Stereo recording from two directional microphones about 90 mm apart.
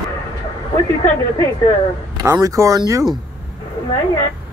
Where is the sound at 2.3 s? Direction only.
40° right (ahead or behind).